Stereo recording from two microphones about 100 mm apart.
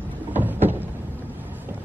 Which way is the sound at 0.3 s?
20° right (ahead or behind).